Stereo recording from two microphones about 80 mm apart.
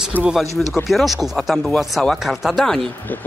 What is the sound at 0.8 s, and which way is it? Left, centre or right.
Speech, centre.